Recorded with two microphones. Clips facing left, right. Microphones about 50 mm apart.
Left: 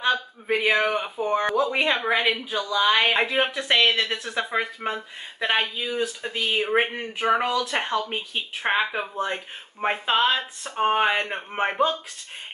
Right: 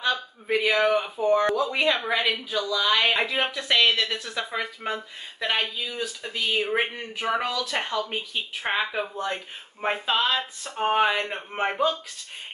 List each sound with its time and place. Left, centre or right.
0.0 s speech: left; by 1.6 s centre
1.6 s a woman's voice: left
4.8 s a woman's voice: centre
11.1 s a woman's voice: left